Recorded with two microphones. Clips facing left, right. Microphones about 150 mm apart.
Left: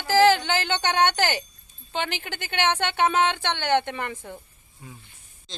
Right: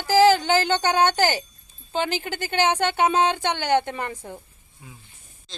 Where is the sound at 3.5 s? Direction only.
10° right (ahead or behind).